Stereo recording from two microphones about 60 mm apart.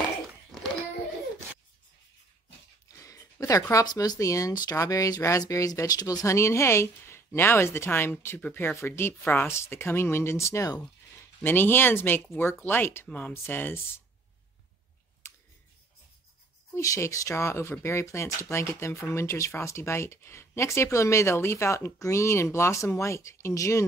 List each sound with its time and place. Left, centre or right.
3.0 s a sound: left
3.7 s speech: left
6.2 s speech: left
9.5 s speech: left
10.3 s speech: left
11.4 s speech: left
16.8 s speech: left